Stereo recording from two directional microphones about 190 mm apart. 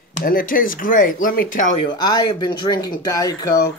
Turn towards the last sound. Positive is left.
turn(degrees=20)  # may be behind; listen again after turning